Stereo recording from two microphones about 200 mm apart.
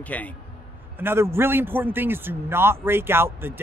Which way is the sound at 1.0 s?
10° right (ahead or behind).